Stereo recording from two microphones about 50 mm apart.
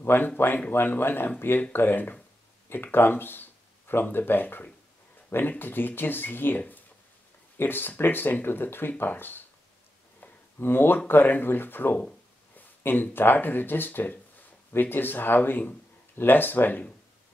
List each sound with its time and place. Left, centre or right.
0.0 s speech: left
10.6 s speech: left